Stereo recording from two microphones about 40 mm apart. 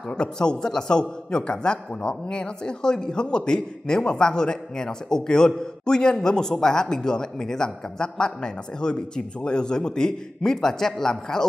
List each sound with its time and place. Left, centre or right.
0.1 s a man's voice: left